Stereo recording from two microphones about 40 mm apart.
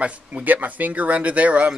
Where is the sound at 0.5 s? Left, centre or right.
Right.